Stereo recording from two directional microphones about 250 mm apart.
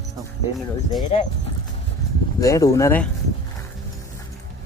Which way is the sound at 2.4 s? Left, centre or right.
Centre.